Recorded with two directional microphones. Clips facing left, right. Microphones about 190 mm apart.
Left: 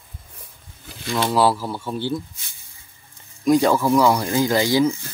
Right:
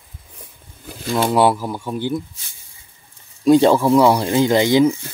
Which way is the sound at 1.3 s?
20° right (ahead or behind).